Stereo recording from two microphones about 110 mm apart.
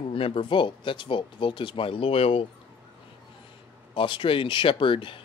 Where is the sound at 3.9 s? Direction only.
50° left (ahead or behind).